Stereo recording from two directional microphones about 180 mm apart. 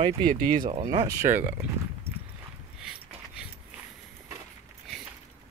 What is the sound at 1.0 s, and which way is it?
Speech, 15° right (ahead or behind).